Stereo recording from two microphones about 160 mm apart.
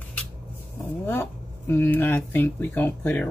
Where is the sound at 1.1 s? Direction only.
15° left (ahead or behind).